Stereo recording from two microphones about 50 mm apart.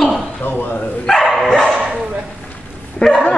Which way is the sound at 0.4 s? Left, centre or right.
Left.